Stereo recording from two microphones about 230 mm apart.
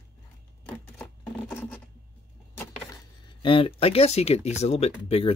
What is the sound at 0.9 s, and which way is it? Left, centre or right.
Speech, centre.